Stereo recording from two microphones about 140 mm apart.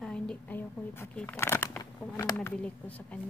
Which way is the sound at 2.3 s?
10° left (ahead or behind).